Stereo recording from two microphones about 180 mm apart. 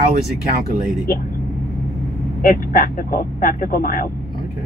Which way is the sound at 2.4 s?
50° left (ahead or behind).